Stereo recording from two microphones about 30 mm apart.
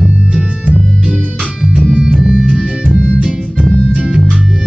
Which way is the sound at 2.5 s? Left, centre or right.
Right.